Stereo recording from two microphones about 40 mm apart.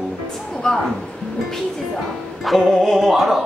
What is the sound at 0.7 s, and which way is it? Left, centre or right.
Speech, left.